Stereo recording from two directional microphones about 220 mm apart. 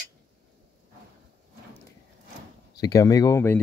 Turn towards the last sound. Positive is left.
turn(degrees=10)  # may be behind; listen again after turning